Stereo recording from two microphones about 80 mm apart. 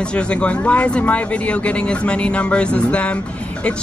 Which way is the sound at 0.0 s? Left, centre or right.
Centre.